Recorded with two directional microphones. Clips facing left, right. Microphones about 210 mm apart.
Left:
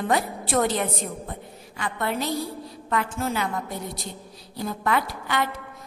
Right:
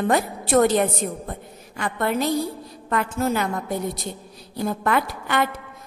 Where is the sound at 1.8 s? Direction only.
45° right (ahead or behind).